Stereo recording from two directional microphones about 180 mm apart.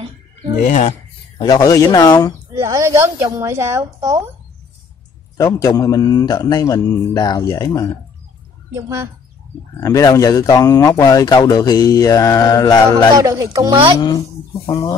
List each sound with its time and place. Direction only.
0.7 s speech: 40° left (ahead or behind)
1.4 s a man's voice: 20° left (ahead or behind)
2.6 s a woman's voice: 20° right (ahead or behind)
5.4 s a man's voice: 20° left (ahead or behind)
8.7 s a woman's voice: 15° right (ahead or behind)
9.8 s a man's voice: 20° left (ahead or behind)
13.2 s speech: 20° right (ahead or behind)
14.7 s a man's voice: 20° left (ahead or behind)